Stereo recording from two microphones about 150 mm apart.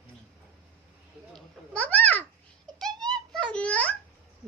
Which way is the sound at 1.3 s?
5° left (ahead or behind).